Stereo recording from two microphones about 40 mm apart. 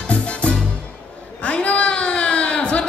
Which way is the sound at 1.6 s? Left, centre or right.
Left.